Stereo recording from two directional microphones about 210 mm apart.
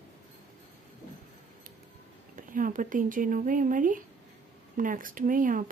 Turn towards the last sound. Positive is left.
turn(degrees=-40)  # may be behind; listen again after turning